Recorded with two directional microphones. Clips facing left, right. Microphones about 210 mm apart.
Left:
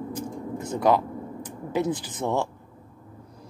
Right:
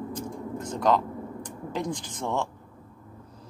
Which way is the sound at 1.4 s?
5° left (ahead or behind).